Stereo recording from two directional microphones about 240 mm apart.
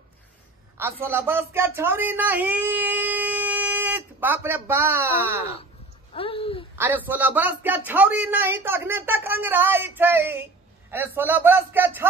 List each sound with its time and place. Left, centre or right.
1.0 s speech: centre
6.1 s a sound: left
6.8 s speech: centre